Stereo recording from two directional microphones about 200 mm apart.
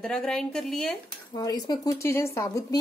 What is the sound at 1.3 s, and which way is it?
Speech, 20° left (ahead or behind).